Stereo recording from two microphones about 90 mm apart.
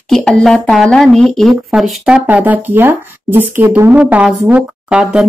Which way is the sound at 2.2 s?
20° right (ahead or behind).